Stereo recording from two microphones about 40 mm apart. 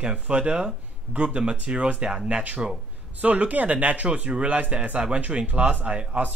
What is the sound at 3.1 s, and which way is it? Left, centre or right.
Speech, right.